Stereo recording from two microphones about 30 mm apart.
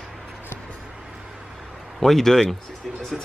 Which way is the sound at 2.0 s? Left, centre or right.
Centre.